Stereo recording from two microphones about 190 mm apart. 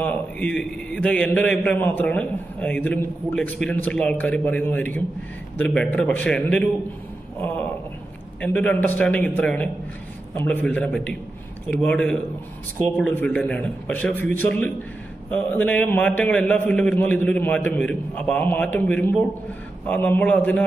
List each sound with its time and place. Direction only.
0.0 s a man's voice: 10° left (ahead or behind)